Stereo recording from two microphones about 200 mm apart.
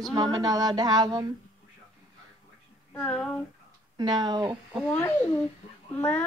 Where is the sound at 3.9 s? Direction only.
20° right (ahead or behind).